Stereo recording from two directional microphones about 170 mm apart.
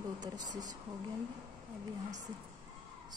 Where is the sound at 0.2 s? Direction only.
20° right (ahead or behind).